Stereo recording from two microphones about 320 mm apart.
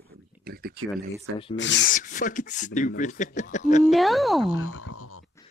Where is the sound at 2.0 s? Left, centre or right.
Left.